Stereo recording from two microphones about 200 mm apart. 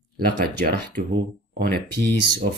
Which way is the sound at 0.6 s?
50° right (ahead or behind).